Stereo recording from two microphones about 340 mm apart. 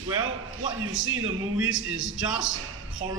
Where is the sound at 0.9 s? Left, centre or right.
Right.